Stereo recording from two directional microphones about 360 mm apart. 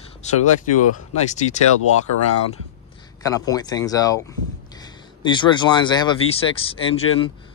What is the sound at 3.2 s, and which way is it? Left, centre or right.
Speech, centre.